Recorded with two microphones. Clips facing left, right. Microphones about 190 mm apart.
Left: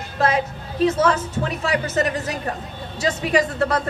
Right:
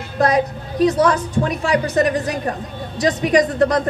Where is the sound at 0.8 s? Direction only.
35° right (ahead or behind).